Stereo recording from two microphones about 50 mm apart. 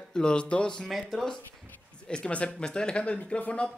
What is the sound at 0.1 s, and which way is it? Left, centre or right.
Speech, centre.